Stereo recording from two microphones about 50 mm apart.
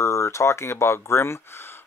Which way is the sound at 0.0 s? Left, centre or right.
Left.